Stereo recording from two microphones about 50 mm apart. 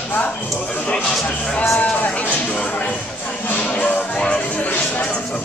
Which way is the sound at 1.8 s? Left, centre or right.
Left.